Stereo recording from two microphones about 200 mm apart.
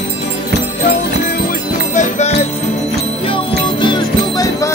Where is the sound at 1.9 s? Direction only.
35° left (ahead or behind).